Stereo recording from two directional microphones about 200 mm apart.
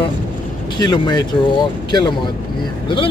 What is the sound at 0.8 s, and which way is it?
Speech, 20° left (ahead or behind).